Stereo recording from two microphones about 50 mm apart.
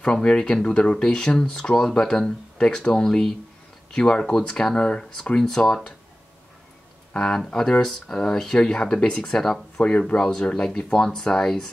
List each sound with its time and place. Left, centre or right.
0.0 s speech: left
7.2 s speech: centre
9.8 s speech: left
10.2 s speech: centre